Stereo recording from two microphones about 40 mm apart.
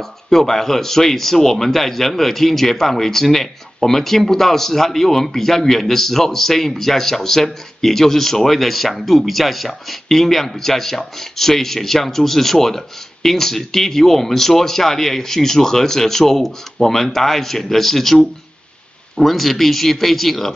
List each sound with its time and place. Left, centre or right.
0.3 s speech: centre